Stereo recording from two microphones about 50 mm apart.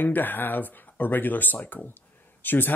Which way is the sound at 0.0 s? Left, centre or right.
Left.